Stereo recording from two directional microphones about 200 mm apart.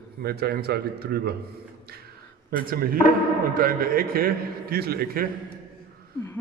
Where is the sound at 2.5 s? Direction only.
45° right (ahead or behind).